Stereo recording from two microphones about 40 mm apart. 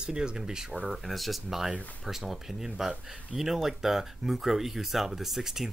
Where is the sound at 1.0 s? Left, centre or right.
Centre.